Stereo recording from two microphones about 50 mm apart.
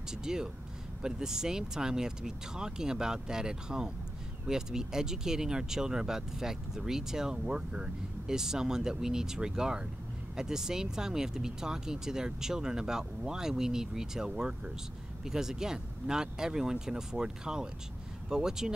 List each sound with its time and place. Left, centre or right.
0.1 s speech: centre